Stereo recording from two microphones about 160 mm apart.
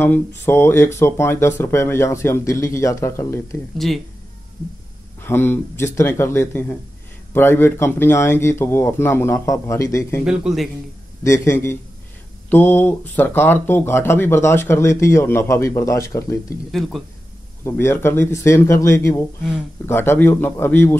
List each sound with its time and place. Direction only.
0.0 s speech: 15° left (ahead or behind)
3.7 s speech: centre (ahead or behind)
5.2 s speech: 15° left (ahead or behind)
10.2 s speech: 5° right (ahead or behind)
11.2 s speech: 15° left (ahead or behind)
16.7 s speech: centre (ahead or behind)
17.6 s speech: 15° left (ahead or behind)